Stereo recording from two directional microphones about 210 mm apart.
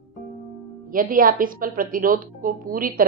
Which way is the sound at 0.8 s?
40° right (ahead or behind).